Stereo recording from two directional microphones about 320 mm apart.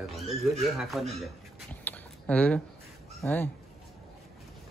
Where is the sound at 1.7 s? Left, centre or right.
Centre.